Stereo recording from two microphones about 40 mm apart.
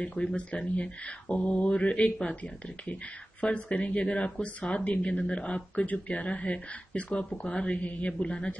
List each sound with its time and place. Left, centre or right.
0.2 s speech: left
5.3 s speech: left